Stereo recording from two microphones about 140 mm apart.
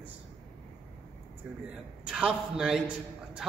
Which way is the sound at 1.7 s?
5° right (ahead or behind).